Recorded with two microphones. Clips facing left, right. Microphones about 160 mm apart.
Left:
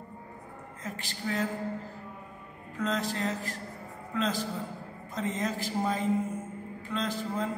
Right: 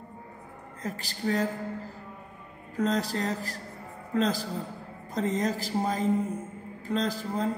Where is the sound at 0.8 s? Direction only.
40° right (ahead or behind).